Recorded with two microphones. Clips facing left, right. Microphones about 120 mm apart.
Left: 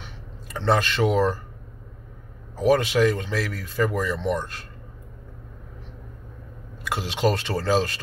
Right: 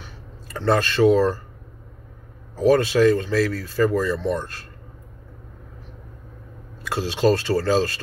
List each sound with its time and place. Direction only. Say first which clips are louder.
0.0 s a sound: even; 20° left (ahead or behind)
2.5 s speech: right 3 dB; 15° left (ahead or behind)
6.9 s speech: right 4 dB; 15° left (ahead or behind)